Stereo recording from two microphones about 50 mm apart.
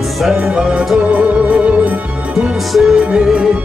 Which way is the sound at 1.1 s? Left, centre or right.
Right.